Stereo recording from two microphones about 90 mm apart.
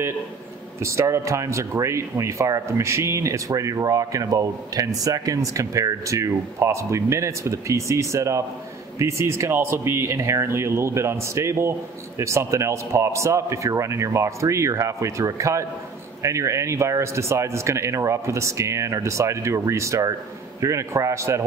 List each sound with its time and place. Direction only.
0.7 s speech: 35° right (ahead or behind)